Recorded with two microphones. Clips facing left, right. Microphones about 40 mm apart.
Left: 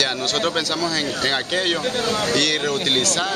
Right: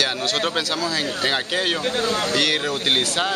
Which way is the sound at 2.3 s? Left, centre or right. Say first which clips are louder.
Left 1 dB; centre.